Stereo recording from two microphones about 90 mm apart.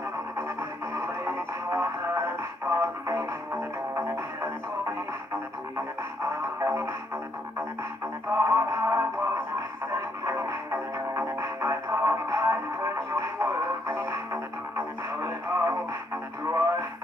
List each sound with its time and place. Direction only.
0.9 s music: 25° right (ahead or behind)
8.3 s music: 30° right (ahead or behind)
10.2 s music: 30° right (ahead or behind)
16.4 s radio: 25° right (ahead or behind)